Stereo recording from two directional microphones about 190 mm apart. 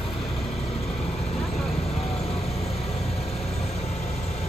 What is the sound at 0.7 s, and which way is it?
Vehicle, 35° left (ahead or behind).